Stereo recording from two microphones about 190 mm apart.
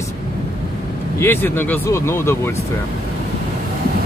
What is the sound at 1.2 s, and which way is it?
Speech, 10° left (ahead or behind).